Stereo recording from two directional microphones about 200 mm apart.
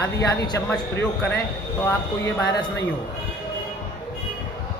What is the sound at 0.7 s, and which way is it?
Speech, 5° left (ahead or behind).